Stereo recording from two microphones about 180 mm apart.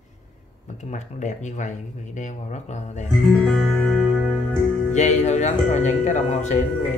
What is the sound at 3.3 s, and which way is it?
Music, centre (ahead or behind).